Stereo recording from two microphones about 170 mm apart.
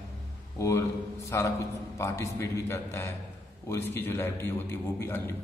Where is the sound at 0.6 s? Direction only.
15° left (ahead or behind).